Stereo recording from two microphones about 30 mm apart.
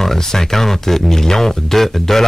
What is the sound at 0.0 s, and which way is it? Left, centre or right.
Speech, centre.